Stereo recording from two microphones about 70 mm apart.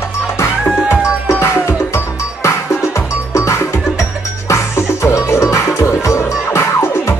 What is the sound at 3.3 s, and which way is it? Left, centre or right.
Music, left.